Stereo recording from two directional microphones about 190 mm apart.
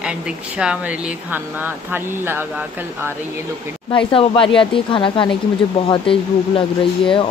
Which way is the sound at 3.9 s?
25° left (ahead or behind).